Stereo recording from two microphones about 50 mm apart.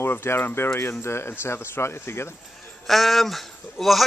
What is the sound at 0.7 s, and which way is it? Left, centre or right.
Speech, left.